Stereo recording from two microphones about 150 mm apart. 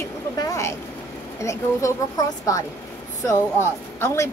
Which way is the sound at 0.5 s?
20° left (ahead or behind).